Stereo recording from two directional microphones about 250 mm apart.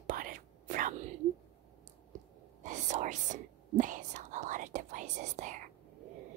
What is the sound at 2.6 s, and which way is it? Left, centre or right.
Whispering, right.